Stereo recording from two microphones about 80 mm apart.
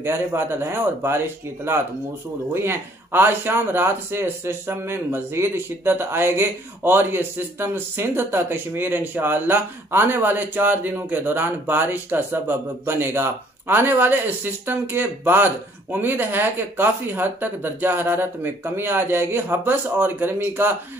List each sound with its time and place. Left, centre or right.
0.0 s speech: right